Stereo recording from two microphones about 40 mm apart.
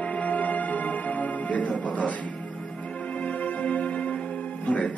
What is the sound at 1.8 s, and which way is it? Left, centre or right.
Speech, left.